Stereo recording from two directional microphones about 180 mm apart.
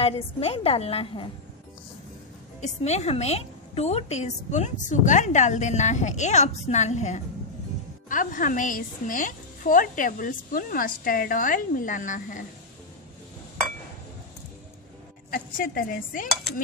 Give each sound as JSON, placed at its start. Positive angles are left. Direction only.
{"t": 0.0, "sound": "a woman's voice", "side_deg": 35}
{"t": 2.6, "sound": "a woman's voice", "side_deg": 40}
{"t": 15.3, "sound": "a woman's voice", "side_deg": 50}